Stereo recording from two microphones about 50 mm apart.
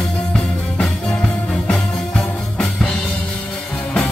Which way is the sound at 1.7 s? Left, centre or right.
Centre.